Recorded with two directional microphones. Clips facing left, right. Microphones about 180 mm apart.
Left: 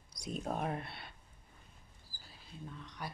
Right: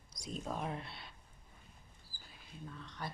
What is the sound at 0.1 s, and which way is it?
Speech, 60° left (ahead or behind).